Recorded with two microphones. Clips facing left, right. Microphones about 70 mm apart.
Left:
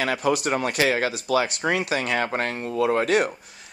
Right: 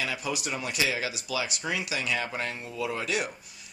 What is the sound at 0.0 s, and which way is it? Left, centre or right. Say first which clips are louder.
Speech: left 9 dB; left.